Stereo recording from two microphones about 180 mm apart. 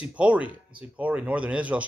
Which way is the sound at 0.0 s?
5° right (ahead or behind).